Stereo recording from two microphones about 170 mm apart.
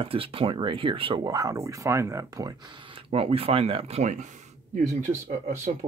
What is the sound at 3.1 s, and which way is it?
Speech, 35° right (ahead or behind).